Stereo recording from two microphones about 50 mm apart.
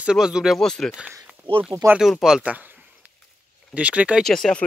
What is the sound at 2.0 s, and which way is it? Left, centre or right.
Speech, centre.